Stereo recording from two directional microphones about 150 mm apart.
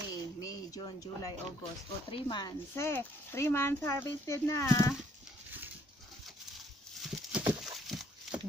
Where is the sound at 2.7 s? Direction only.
15° left (ahead or behind).